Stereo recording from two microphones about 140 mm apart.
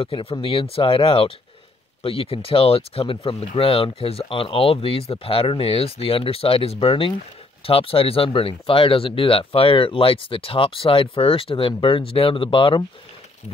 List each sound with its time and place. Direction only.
0.0 s speech: 40° left (ahead or behind)